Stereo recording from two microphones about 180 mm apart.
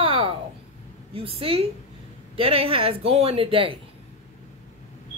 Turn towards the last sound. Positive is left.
turn(degrees=-30)  # may be behind; listen again after turning